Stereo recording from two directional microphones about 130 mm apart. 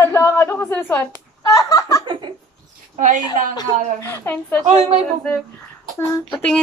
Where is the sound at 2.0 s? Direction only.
40° right (ahead or behind).